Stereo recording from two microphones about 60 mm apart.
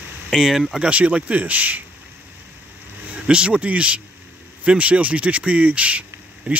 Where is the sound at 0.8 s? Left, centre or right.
Centre.